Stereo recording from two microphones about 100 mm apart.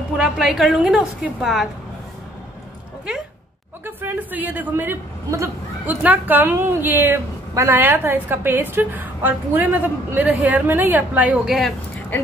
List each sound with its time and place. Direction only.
0.2 s a woman's voice: 5° right (ahead or behind)
3.8 s a woman's voice: 20° right (ahead or behind)